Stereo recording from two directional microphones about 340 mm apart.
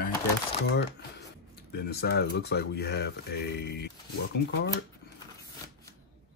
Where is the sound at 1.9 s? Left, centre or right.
Left.